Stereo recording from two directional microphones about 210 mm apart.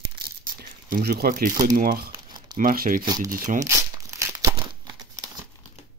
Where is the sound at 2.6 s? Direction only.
40° right (ahead or behind).